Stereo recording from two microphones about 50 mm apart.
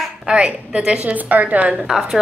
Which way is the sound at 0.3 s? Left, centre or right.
Centre.